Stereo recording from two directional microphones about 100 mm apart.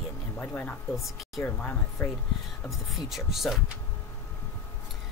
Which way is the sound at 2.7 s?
Centre (ahead or behind).